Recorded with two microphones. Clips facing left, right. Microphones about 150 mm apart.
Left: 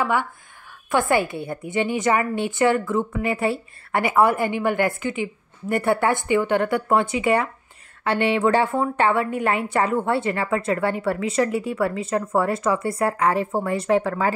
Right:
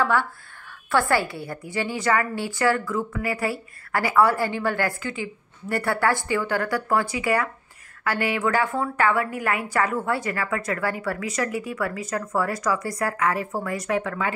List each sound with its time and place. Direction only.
0.0 s a woman's voice: 15° left (ahead or behind); by 14.3 s 35° left (ahead or behind)